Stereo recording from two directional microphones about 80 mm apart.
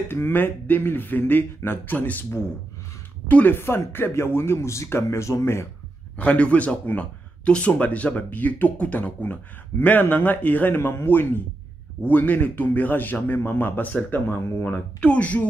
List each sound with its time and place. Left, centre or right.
0.1 s speech: left
3.3 s speech: left
6.1 s speech: centre
15.0 s speech: centre